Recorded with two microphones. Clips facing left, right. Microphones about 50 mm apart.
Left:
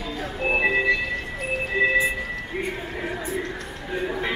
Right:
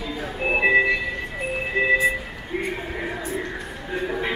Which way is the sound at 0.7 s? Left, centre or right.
Centre.